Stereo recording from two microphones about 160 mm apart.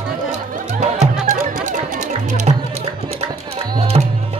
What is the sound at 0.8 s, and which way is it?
Music, 45° right (ahead or behind).